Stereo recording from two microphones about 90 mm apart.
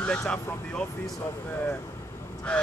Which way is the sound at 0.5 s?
15° left (ahead or behind).